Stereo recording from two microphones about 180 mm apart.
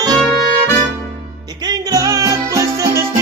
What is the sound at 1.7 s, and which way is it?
Music, 20° right (ahead or behind).